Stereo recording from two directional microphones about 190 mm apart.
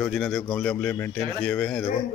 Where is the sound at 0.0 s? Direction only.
5° left (ahead or behind).